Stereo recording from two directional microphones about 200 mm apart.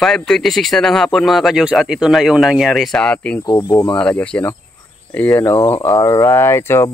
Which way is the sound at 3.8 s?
5° left (ahead or behind).